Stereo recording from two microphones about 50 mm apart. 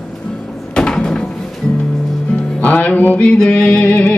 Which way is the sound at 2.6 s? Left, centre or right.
Left.